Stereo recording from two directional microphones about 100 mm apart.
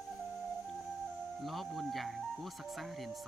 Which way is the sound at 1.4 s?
Centre (ahead or behind).